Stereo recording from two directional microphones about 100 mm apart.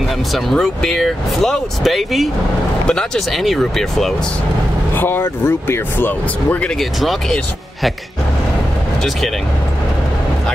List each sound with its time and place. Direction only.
0.3 s speech: centre (ahead or behind)
4.9 s speech: 20° left (ahead or behind)
6.8 s speech: centre (ahead or behind)